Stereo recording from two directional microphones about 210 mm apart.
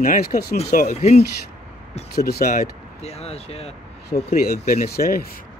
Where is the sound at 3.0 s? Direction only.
30° left (ahead or behind).